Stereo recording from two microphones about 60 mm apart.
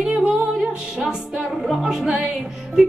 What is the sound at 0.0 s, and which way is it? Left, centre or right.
Music, right.